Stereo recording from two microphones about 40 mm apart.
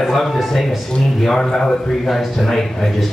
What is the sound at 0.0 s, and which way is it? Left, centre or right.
A man's voice, centre.